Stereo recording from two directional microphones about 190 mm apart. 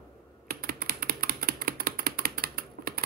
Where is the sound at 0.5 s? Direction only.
50° right (ahead or behind).